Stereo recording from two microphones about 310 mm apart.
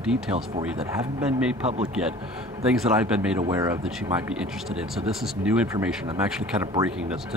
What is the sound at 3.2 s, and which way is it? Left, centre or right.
Speech, centre.